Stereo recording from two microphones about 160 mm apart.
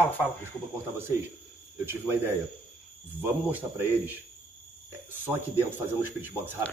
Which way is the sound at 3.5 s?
10° right (ahead or behind).